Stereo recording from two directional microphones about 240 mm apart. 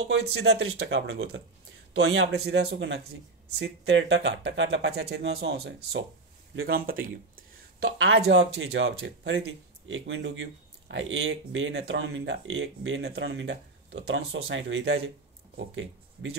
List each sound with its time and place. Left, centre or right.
0.3 s speech: right